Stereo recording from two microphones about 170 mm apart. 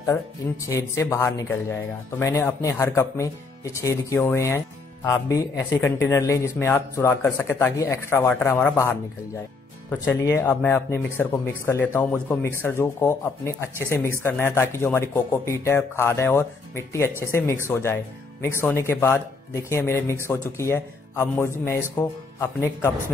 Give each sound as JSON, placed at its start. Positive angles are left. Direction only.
{"t": 0.0, "sound": "speech", "side_deg": 20}
{"t": 10.3, "sound": "speech", "side_deg": 15}